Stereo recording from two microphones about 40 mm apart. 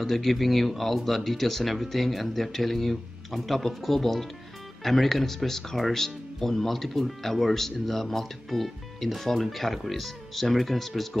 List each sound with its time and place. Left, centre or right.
0.0 s speech: centre